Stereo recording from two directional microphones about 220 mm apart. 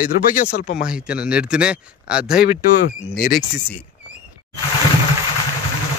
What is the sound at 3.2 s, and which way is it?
Speech, 40° left (ahead or behind).